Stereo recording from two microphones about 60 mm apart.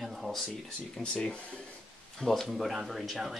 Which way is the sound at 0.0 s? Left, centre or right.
Centre.